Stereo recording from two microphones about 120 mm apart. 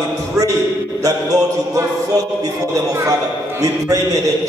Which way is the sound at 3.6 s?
30° right (ahead or behind).